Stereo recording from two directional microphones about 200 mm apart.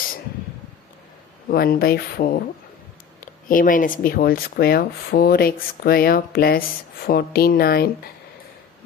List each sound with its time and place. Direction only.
1.5 s speech: 50° left (ahead or behind)
3.4 s speech: 45° left (ahead or behind)